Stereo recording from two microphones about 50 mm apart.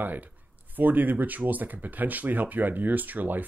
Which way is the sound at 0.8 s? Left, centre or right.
Right.